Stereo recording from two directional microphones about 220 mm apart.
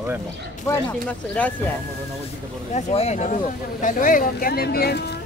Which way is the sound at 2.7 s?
30° left (ahead or behind).